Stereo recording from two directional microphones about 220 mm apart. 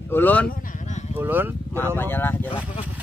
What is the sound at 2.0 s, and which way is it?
Speech, 10° left (ahead or behind).